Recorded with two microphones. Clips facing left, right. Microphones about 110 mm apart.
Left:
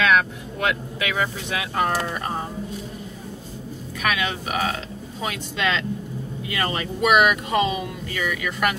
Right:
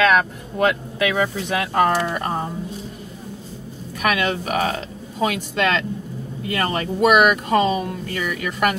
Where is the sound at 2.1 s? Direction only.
40° right (ahead or behind).